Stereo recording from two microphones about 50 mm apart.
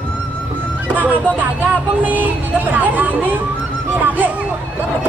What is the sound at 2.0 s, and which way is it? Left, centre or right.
Speech, right.